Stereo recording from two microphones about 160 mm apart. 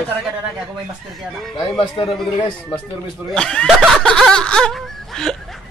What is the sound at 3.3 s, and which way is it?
Snicker, 5° left (ahead or behind).